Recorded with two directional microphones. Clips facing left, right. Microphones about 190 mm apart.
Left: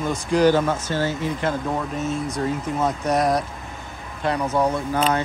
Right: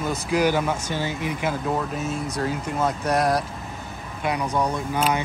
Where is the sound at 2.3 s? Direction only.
Centre (ahead or behind).